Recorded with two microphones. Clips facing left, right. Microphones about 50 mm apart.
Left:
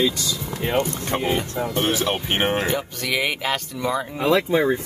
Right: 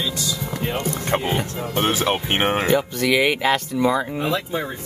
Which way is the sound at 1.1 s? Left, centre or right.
Right.